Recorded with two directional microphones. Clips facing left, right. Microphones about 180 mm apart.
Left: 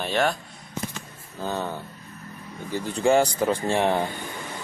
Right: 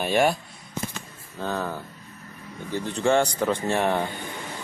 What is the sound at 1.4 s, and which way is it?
Speech, centre (ahead or behind).